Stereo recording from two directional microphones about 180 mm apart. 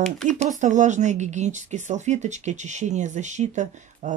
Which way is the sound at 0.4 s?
40° right (ahead or behind).